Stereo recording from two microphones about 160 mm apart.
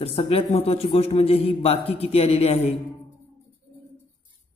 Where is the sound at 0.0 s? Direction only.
40° left (ahead or behind).